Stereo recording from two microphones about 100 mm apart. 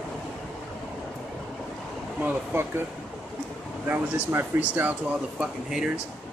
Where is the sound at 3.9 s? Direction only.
20° right (ahead or behind).